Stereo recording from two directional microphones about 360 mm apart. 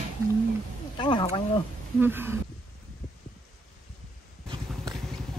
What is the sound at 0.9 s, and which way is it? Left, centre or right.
Speech, centre.